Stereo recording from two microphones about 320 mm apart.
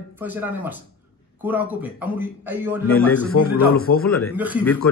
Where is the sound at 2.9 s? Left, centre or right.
Centre.